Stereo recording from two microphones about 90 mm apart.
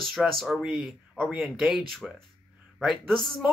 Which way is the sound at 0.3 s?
Centre (ahead or behind).